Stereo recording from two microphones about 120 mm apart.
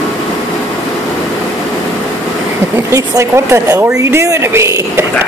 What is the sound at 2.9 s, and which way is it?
Speech, 25° right (ahead or behind).